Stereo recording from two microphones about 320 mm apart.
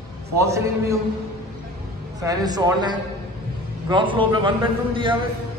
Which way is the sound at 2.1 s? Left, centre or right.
Centre.